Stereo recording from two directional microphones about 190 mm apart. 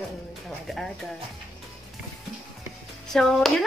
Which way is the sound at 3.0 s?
Centre (ahead or behind).